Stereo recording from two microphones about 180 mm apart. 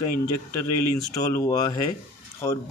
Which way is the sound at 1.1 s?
20° left (ahead or behind).